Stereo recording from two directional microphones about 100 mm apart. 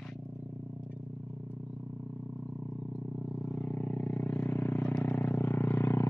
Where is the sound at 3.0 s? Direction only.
Centre (ahead or behind).